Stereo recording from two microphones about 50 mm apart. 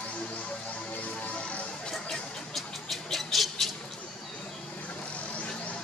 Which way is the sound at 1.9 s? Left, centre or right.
Centre.